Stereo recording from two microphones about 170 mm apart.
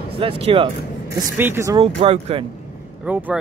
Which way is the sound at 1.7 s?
35° right (ahead or behind).